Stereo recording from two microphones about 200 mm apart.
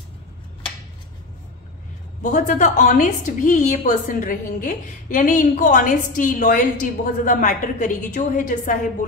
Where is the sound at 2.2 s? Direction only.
40° left (ahead or behind).